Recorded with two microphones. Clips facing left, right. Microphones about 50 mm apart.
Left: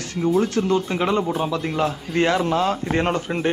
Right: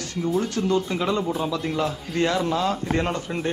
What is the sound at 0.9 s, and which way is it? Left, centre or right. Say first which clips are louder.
Speech: left 3 dB; left.